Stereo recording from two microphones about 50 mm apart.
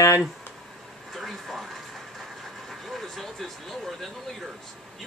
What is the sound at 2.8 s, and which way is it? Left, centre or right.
Vehicle, centre.